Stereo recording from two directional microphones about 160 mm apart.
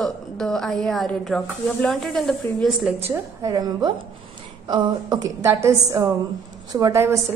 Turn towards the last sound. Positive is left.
turn(degrees=-20)  # may be behind; listen again after turning